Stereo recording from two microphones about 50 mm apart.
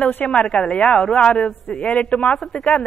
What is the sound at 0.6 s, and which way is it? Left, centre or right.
A woman's voice, left.